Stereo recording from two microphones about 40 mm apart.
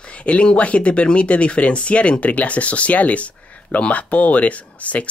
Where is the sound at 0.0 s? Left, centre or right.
Left.